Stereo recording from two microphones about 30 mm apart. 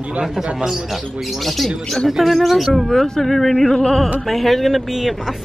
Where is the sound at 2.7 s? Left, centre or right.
Centre.